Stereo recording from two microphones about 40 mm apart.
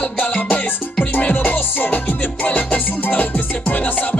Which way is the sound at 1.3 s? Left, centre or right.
Left.